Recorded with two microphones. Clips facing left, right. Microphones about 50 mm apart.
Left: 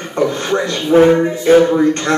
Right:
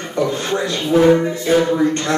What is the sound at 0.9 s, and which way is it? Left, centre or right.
Speech, left.